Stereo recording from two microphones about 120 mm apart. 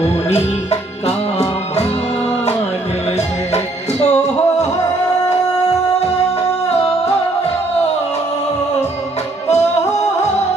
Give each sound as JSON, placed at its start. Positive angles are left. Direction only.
{"t": 0.0, "sound": "music", "side_deg": 65}
{"t": 3.5, "sound": "music", "side_deg": 70}